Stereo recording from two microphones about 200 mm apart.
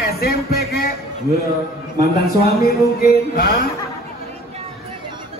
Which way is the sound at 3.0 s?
50° left (ahead or behind).